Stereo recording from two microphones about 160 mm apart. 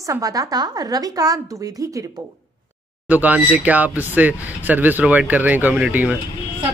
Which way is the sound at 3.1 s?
10° right (ahead or behind).